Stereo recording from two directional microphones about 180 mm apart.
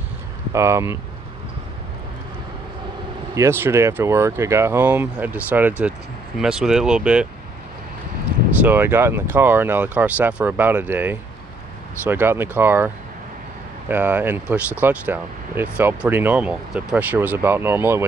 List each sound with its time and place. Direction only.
0.5 s speech: 15° right (ahead or behind)
3.3 s speech: 15° right (ahead or behind)
8.6 s speech: 10° right (ahead or behind)